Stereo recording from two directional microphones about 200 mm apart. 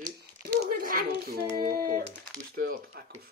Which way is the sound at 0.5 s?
45° right (ahead or behind).